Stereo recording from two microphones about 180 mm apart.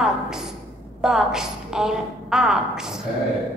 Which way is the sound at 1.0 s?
5° right (ahead or behind).